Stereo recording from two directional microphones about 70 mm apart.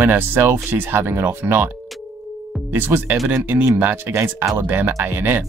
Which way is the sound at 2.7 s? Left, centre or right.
Right.